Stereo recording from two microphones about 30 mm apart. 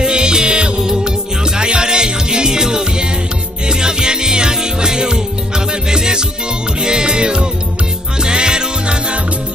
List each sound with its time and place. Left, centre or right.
0.0 s music: right